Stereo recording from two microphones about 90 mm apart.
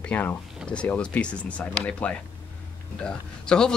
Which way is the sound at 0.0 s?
20° left (ahead or behind).